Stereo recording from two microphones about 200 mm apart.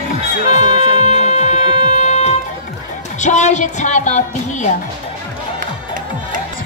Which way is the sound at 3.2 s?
35° left (ahead or behind).